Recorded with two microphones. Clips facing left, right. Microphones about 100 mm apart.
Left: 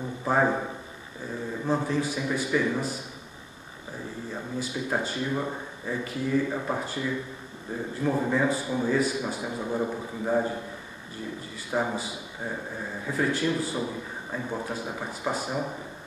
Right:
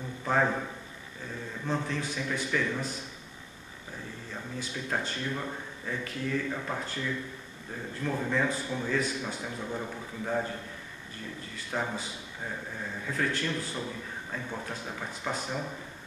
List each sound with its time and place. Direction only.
0.2 s a man's voice: 15° left (ahead or behind)
1.7 s a man's voice: 10° left (ahead or behind)
4.6 s a man's voice: 15° left (ahead or behind)
11.7 s a man's voice: 15° left (ahead or behind)